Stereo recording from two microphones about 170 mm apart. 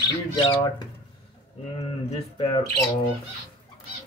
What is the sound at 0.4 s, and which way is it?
Speech, 30° left (ahead or behind).